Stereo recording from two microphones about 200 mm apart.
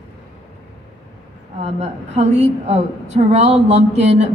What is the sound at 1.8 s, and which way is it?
A man's voice, 35° right (ahead or behind).